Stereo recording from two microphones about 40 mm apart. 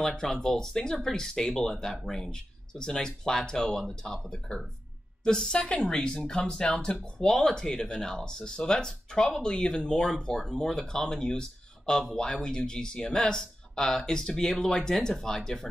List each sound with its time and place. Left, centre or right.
0.0 s a woman's voice: centre